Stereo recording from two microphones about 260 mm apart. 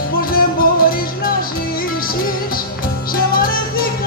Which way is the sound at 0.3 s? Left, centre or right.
Left.